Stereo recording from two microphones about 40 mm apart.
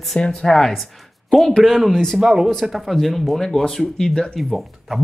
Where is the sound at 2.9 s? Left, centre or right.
Centre.